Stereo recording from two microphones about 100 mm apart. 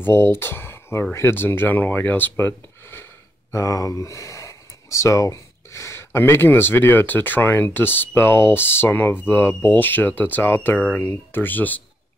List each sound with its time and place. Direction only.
0.0 s speech: 25° left (ahead or behind)